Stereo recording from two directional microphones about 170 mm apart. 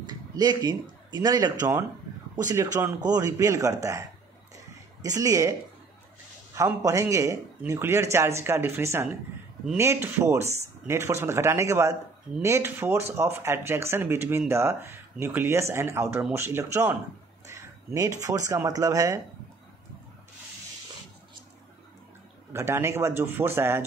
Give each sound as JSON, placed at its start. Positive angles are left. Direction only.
{"t": 0.0, "sound": "a man's voice", "side_deg": -25}
{"t": 5.0, "sound": "a man's voice", "side_deg": -20}
{"t": 22.5, "sound": "speech", "side_deg": -15}